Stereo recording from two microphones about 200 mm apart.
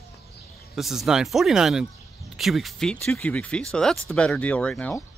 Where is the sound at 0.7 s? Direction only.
Centre (ahead or behind).